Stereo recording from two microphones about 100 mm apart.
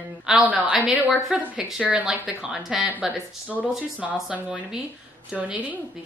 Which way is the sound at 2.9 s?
15° right (ahead or behind).